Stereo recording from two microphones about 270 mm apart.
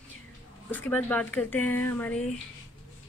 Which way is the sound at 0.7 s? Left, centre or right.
Centre.